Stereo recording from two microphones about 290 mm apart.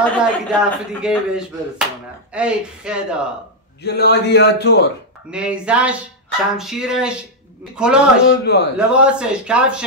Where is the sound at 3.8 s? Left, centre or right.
Left.